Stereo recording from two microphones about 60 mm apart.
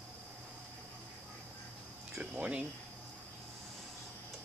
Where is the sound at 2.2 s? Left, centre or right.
Right.